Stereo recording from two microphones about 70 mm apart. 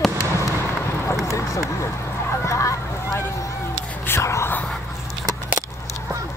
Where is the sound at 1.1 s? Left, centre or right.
Left.